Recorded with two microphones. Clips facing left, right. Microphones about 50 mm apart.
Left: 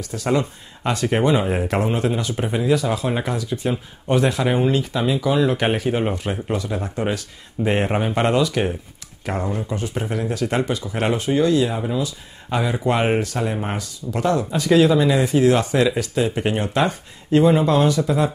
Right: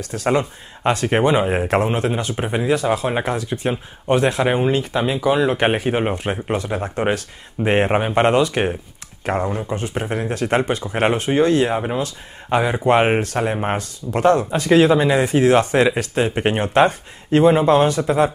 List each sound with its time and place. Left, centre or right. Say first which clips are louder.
0.0 s speech: right 3 dB; right
0.3 s speech: right 2 dB; right
3.7 s speech: right 2 dB; right
12.5 s speech: right 5 dB; right